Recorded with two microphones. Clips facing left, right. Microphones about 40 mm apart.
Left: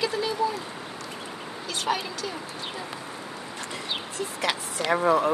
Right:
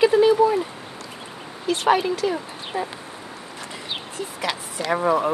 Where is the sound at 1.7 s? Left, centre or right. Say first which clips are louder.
Right 9 dB; right.